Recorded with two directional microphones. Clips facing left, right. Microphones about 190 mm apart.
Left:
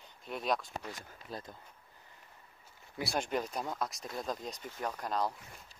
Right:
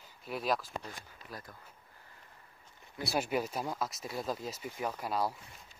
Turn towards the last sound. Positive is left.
turn(degrees=-5)  # may be behind; listen again after turning